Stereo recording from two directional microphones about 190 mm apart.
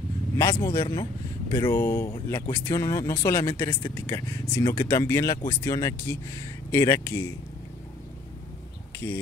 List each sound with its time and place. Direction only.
0.4 s speech: 15° left (ahead or behind)